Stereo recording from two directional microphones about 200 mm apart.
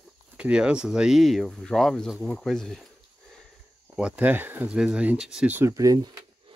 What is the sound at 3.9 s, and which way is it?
Speech, 5° right (ahead or behind).